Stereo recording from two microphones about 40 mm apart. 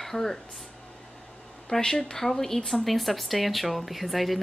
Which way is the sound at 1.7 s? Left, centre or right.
Left.